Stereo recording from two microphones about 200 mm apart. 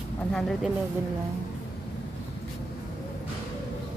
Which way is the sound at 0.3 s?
Centre (ahead or behind).